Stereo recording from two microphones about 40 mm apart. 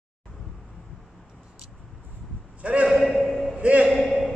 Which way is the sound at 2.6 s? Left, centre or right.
Right.